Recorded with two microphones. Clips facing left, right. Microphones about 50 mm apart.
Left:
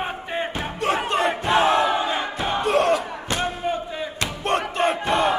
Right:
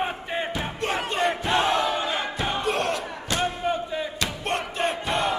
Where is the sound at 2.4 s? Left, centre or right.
Centre.